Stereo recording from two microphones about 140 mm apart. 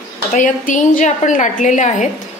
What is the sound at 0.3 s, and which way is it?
A woman's voice, 65° left (ahead or behind).